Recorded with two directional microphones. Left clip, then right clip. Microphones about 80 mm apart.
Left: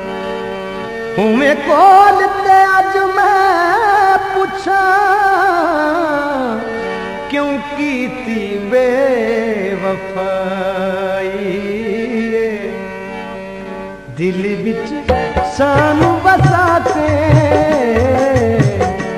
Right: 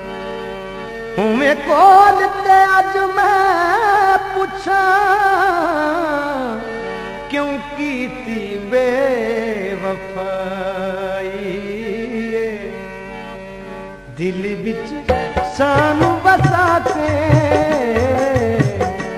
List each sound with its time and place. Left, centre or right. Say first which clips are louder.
1.1 s music: left 3 dB; left
14.2 s music: left 4 dB; left